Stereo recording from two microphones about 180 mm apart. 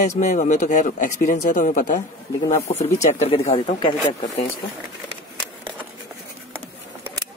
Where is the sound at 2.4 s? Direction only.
35° left (ahead or behind).